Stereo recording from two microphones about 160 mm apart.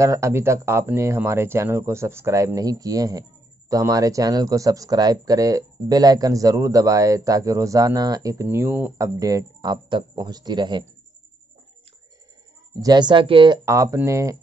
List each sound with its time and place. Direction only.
0.0 s speech: 20° right (ahead or behind)
12.8 s speech: 25° right (ahead or behind)
13.7 s speech: 20° right (ahead or behind)